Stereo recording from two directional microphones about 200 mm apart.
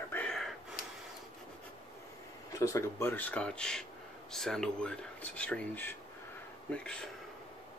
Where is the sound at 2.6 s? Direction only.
15° left (ahead or behind).